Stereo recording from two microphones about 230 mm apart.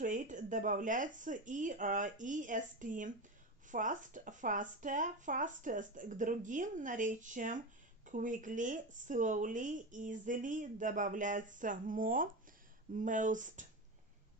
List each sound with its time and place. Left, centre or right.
0.0 s speech: right